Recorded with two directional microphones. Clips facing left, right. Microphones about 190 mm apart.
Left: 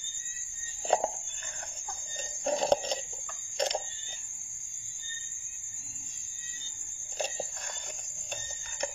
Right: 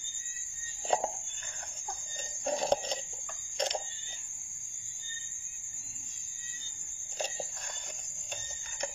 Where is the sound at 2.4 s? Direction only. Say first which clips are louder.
Left 3 dB; 65° left (ahead or behind).